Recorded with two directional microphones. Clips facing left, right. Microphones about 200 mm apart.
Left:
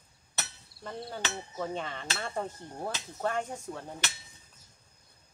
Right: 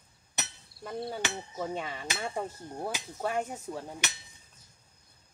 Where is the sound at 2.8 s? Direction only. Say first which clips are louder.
Left 1 dB; 10° right (ahead or behind).